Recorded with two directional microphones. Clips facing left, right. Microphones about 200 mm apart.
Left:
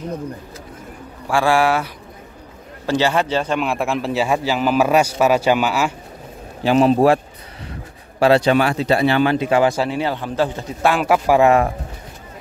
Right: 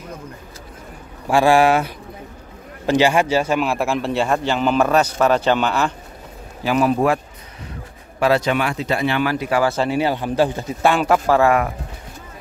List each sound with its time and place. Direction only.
1.3 s speech: 20° right (ahead or behind)
2.9 s a man's voice: 15° right (ahead or behind); by 5.9 s 5° left (ahead or behind)
6.6 s speech: 25° left (ahead or behind)
8.2 s a man's voice: 30° left (ahead or behind)
9.8 s a man's voice: 10° right (ahead or behind)
10.8 s a man's voice: centre (ahead or behind); by 11.7 s 25° left (ahead or behind)